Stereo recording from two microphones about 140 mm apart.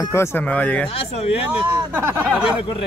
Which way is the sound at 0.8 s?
45° left (ahead or behind).